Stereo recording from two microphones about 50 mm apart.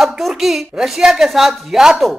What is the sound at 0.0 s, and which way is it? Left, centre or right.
Speech, centre.